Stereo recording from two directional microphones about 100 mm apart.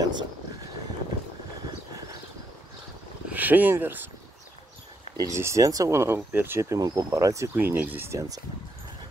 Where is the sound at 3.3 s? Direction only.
15° right (ahead or behind).